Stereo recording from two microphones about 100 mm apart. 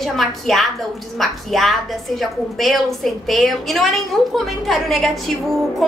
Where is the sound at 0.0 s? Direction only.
Centre (ahead or behind).